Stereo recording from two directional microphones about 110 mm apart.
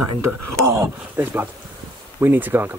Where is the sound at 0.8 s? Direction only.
20° right (ahead or behind).